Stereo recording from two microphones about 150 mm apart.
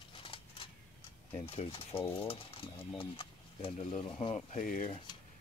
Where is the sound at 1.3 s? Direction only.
40° left (ahead or behind); by 4.8 s 55° left (ahead or behind).